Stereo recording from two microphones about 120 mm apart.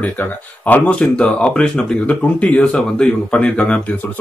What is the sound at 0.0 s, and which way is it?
Speech, 15° left (ahead or behind).